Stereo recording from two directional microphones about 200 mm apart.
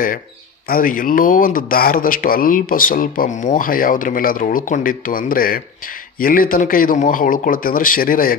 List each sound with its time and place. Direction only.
0.7 s speech: 45° left (ahead or behind)